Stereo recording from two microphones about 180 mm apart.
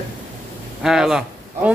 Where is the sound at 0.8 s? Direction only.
Centre (ahead or behind).